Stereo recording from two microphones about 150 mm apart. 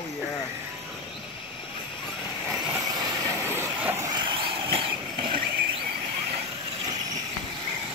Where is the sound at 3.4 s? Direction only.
15° right (ahead or behind).